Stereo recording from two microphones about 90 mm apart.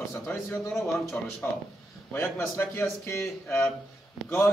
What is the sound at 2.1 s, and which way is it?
A man's voice, 25° left (ahead or behind).